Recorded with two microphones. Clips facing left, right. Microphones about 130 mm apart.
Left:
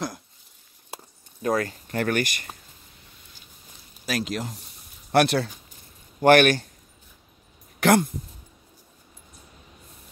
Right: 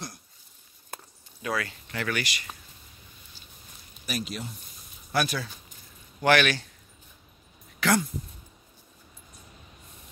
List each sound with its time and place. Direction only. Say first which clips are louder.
1.4 s speech: left 7 dB; 40° left (ahead or behind)
4.0 s speech: left 6 dB; 90° left
5.1 s speech: left 8 dB; 65° left (ahead or behind)
6.2 s speech: left 6 dB; 50° left (ahead or behind)
7.8 s a sound: left 6 dB; 55° left (ahead or behind)